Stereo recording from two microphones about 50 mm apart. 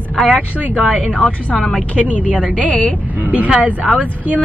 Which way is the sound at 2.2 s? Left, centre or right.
Right.